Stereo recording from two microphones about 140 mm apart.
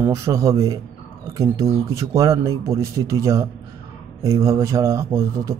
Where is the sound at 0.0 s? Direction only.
20° right (ahead or behind).